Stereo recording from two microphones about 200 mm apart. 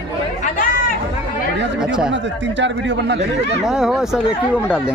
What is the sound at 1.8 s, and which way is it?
Speech, 5° right (ahead or behind).